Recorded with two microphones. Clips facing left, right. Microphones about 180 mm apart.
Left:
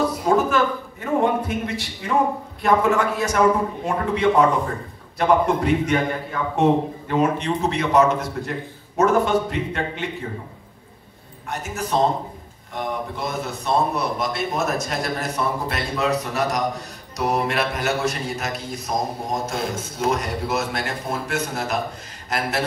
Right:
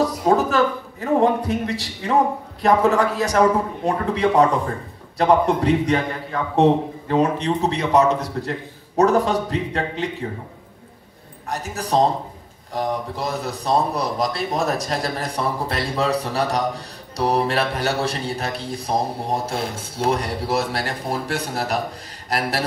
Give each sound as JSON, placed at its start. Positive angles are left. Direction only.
{"t": 0.0, "sound": "a sound", "side_deg": -40}
{"t": 1.2, "sound": "a man's voice", "side_deg": -35}
{"t": 11.4, "sound": "a man's voice", "side_deg": -35}